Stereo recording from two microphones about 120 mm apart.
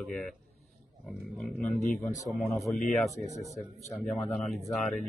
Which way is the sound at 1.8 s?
90° left.